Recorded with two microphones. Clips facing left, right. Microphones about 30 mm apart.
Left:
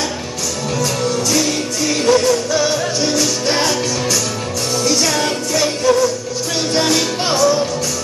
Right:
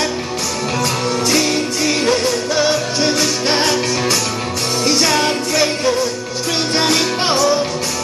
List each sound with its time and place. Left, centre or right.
1.0 s music: right